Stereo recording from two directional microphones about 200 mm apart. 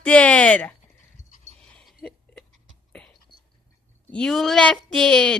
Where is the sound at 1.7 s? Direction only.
5° left (ahead or behind).